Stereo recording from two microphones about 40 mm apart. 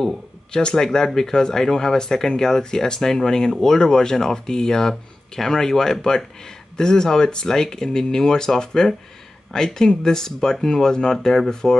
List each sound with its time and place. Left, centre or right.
0.0 s speech: left